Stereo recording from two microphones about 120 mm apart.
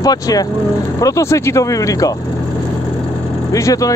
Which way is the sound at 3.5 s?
30° left (ahead or behind).